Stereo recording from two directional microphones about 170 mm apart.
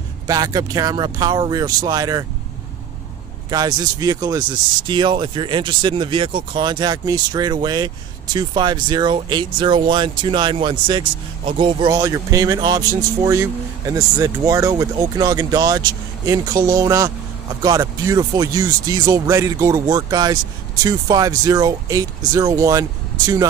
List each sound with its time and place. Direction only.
0.3 s speech: 20° right (ahead or behind)
3.4 s speech: 25° right (ahead or behind)